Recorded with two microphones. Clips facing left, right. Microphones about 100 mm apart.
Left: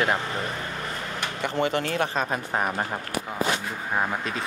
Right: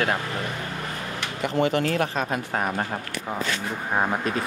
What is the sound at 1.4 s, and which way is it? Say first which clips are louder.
Speech: right 3 dB; 25° left (ahead or behind).